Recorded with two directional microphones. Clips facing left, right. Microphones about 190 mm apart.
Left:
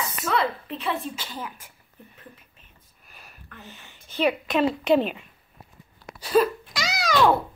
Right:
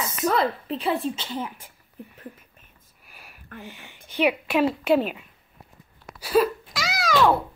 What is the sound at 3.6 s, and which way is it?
A woman's voice, 15° right (ahead or behind).